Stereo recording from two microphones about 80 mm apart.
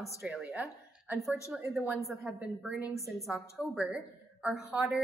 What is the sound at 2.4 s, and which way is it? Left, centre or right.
Speech, centre.